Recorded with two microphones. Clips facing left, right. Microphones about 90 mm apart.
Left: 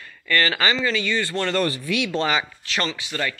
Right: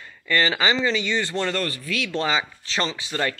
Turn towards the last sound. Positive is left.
turn(degrees=-35)  # may be behind; listen again after turning